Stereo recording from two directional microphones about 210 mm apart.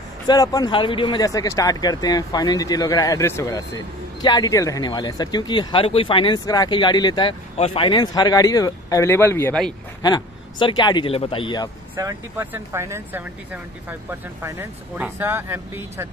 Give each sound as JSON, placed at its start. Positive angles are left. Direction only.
{"t": 0.3, "sound": "speech", "side_deg": 15}
{"t": 11.9, "sound": "speech", "side_deg": -15}